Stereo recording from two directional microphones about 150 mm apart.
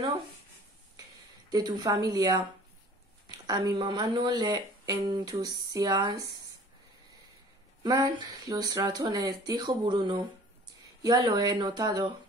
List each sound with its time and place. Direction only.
1.5 s speech: 30° right (ahead or behind)
7.8 s speech: 25° right (ahead or behind)